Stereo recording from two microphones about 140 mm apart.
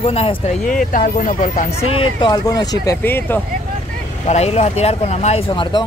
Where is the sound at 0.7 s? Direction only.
70° left (ahead or behind).